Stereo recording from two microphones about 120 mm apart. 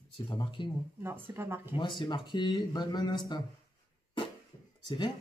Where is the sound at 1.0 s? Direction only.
20° right (ahead or behind).